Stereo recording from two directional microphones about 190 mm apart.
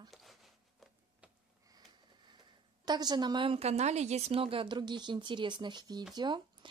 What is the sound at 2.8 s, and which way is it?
A woman's voice, 20° right (ahead or behind).